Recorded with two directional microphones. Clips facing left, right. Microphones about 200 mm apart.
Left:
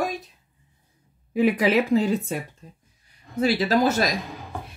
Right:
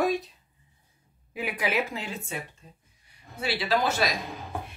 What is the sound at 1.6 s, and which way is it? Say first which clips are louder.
Speech: left 10 dB; 35° left (ahead or behind).